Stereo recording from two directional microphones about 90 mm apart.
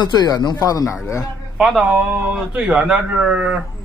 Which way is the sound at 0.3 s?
45° left (ahead or behind).